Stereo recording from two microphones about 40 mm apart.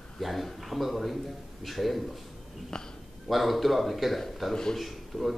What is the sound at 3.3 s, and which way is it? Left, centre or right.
A man's voice, centre.